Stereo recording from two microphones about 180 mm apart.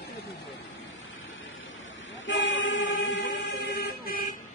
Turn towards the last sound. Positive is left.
turn(degrees=55)  # may be behind; listen again after turning